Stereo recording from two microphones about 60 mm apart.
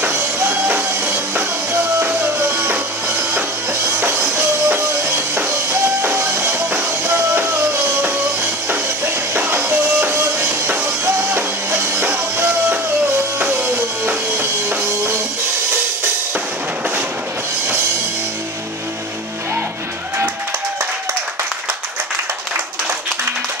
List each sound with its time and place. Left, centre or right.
0.0 s music: right